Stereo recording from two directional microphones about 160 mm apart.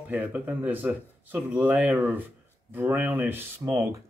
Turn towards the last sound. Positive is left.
turn(degrees=-15)  # may be behind; listen again after turning